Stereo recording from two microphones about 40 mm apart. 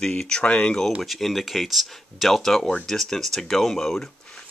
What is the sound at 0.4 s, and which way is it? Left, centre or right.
Speech, left.